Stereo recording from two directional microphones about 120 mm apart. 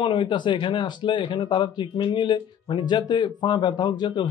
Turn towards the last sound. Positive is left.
turn(degrees=35)  # may be behind; listen again after turning